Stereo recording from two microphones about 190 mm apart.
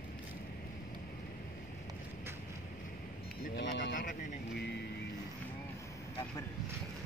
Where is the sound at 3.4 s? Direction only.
65° left (ahead or behind).